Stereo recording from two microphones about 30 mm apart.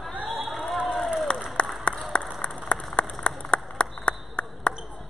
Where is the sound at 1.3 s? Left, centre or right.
Left.